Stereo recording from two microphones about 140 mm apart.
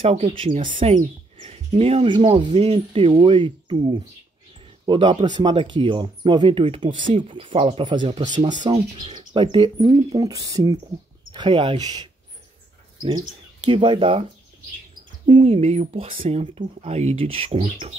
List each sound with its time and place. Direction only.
0.0 s speech: 55° right (ahead or behind)
0.7 s speech: 40° right (ahead or behind)
11.3 s speech: 35° right (ahead or behind)
13.7 s speech: 40° right (ahead or behind)
15.2 s speech: 40° right (ahead or behind)